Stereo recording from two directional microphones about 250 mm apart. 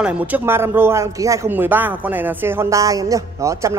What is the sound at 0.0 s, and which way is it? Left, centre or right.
A man's voice, centre.